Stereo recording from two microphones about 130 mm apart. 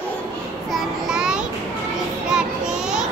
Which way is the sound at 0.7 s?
5° right (ahead or behind).